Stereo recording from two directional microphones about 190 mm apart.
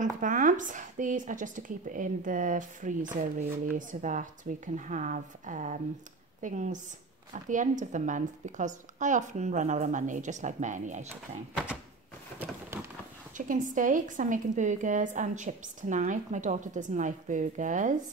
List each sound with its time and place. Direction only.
0.0 s a woman's voice: 45° right (ahead or behind)
13.5 s a woman's voice: 45° right (ahead or behind)